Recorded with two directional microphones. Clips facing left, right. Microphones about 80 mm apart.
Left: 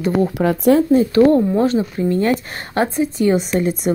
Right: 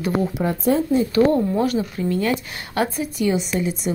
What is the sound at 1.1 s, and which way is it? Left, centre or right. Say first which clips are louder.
A woman's voice: left 4 dB; left.